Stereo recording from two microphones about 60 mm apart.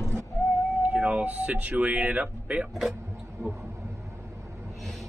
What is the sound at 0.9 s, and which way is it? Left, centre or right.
Speech, centre.